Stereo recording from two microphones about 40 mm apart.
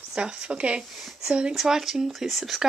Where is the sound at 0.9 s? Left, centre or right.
Centre.